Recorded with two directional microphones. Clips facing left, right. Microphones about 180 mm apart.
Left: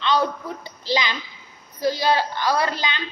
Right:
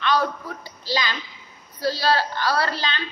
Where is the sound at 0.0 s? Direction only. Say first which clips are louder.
Left 1 dB; 25° left (ahead or behind).